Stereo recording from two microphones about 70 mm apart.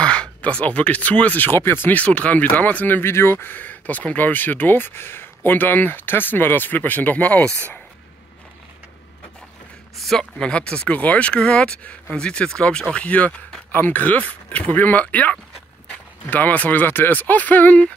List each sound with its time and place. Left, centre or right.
0.0 s speech: centre
3.0 s speech: left
9.9 s a man's voice: centre
10.4 s speech: centre